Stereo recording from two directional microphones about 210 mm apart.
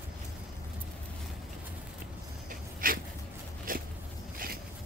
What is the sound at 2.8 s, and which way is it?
Dog, 40° right (ahead or behind).